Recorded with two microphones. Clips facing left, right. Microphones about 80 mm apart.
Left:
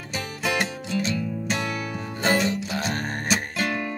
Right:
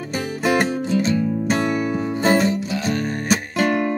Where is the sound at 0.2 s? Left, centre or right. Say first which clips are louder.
Right 7 dB; right.